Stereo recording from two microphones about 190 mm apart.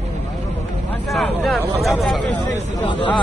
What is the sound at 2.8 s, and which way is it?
Speech, 25° left (ahead or behind).